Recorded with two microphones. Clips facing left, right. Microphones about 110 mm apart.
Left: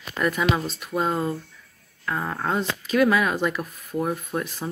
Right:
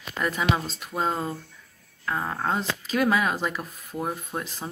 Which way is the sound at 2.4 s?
25° right (ahead or behind).